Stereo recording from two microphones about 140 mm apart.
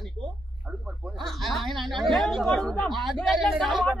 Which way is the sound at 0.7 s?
5° right (ahead or behind).